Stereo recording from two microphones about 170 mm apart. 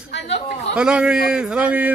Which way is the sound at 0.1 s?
90° left.